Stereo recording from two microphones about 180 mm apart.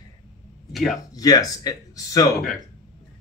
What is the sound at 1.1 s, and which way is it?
Speech, 20° left (ahead or behind).